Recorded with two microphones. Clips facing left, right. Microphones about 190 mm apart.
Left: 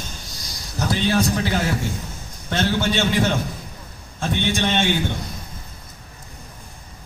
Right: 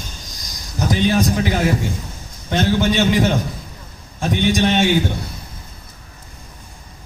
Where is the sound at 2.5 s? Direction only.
15° right (ahead or behind).